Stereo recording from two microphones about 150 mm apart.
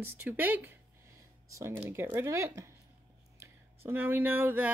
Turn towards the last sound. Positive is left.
turn(degrees=-15)  # may be behind; listen again after turning